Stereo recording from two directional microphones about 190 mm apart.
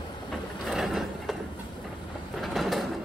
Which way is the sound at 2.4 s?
Centre (ahead or behind).